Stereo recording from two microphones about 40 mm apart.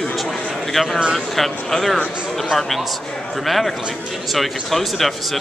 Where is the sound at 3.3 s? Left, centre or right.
Centre.